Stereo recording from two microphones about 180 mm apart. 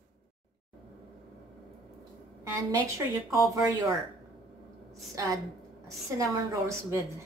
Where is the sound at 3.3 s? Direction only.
15° right (ahead or behind).